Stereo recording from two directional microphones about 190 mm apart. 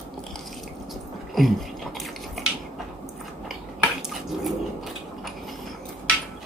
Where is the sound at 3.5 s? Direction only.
Centre (ahead or behind).